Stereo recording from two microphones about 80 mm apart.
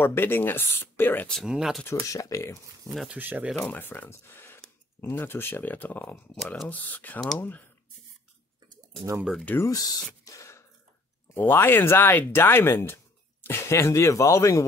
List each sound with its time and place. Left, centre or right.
0.0 s speech: left
1.5 s speech: centre
1.9 s speech: left
3.2 s speech: right
3.6 s speech: left
6.3 s speech: centre
6.7 s speech: left
9.6 s speech: left
10.2 s a sound: left
11.3 s speech: left